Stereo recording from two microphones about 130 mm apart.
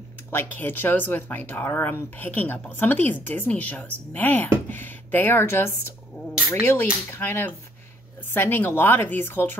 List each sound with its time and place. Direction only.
0.3 s speech: 15° left (ahead or behind)
6.3 s a sound: 10° right (ahead or behind)
7.1 s speech: 15° left (ahead or behind)